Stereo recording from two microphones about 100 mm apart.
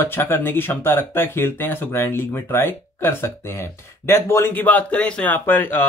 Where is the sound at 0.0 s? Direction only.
20° left (ahead or behind).